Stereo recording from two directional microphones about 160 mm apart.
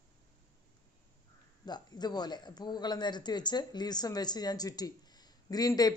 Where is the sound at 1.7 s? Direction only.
25° left (ahead or behind).